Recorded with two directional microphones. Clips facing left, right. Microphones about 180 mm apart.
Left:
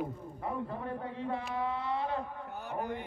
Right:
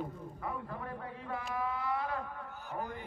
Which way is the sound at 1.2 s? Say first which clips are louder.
Left 2 dB; 25° left (ahead or behind).